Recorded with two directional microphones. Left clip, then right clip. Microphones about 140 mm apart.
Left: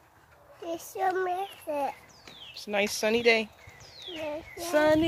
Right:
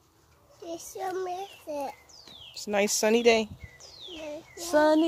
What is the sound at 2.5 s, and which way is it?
Speech, 45° right (ahead or behind).